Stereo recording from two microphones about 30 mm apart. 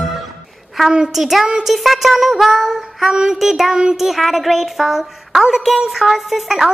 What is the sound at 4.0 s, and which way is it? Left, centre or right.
A woman's voice, centre.